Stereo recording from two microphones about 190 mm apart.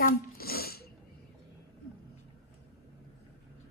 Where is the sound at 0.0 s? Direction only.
50° left (ahead or behind).